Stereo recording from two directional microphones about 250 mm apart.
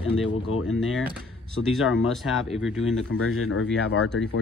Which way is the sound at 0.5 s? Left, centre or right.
Left.